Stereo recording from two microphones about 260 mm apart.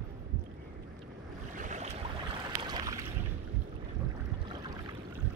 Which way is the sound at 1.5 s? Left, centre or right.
Right.